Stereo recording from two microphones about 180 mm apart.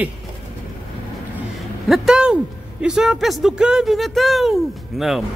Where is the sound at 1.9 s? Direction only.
5° right (ahead or behind).